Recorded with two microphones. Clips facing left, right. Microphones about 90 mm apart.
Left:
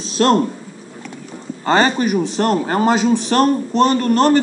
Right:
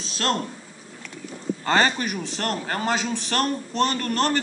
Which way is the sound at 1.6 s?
15° left (ahead or behind).